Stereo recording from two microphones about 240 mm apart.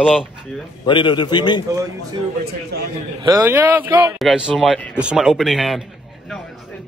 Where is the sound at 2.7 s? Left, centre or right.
Right.